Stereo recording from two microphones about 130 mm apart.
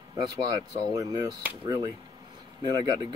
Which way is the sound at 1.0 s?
30° right (ahead or behind).